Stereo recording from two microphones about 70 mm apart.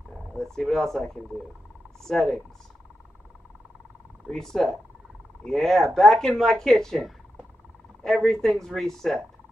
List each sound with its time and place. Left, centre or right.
0.3 s speech: centre
4.3 s speech: centre